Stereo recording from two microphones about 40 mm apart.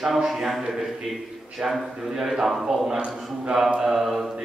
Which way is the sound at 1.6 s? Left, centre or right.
Centre.